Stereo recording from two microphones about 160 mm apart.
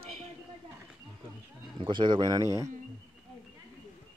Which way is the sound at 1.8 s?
30° right (ahead or behind).